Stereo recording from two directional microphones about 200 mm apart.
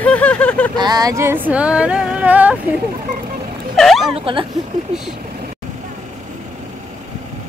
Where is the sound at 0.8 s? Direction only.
20° right (ahead or behind).